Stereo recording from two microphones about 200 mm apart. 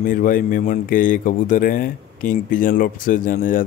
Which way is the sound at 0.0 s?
45° left (ahead or behind).